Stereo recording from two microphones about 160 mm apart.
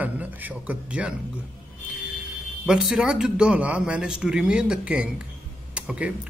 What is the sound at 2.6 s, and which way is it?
A man's voice, 5° right (ahead or behind).